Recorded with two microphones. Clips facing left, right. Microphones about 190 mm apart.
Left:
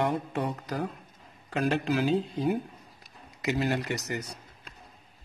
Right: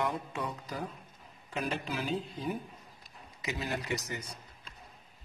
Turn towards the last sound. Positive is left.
turn(degrees=70)  # may be behind; listen again after turning